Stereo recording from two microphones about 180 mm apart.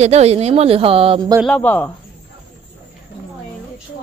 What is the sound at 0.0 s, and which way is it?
Speech, 35° right (ahead or behind).